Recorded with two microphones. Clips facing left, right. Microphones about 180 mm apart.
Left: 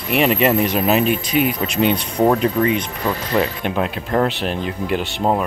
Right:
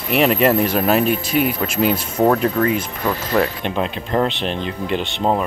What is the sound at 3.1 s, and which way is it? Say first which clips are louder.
Speech: right 1 dB; 5° left (ahead or behind).